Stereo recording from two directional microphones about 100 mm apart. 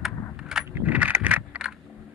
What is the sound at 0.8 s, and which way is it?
Vehicle, 15° right (ahead or behind).